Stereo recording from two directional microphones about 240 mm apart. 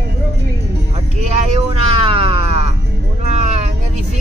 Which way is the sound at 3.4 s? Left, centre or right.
Right.